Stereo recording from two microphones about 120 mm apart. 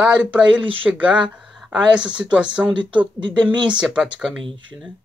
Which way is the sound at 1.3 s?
5° right (ahead or behind).